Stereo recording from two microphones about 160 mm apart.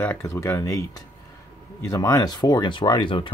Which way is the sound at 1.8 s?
20° left (ahead or behind).